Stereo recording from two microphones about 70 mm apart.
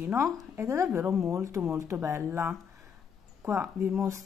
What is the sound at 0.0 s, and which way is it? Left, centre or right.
A woman's voice, right.